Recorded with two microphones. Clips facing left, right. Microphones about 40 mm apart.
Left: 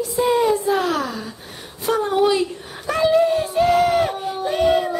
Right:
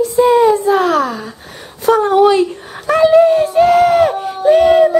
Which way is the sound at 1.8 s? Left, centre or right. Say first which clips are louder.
Right 8 dB; right.